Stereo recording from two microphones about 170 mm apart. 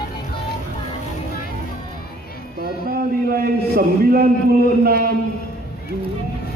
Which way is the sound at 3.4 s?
65° right (ahead or behind).